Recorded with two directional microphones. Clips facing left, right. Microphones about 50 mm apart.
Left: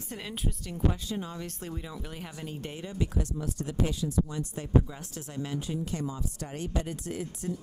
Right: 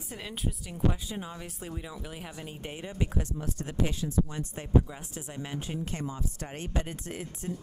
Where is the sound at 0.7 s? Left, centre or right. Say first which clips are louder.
Even; centre.